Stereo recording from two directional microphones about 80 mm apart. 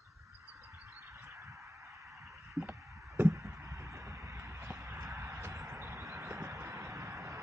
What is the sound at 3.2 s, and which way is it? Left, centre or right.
Chop, right.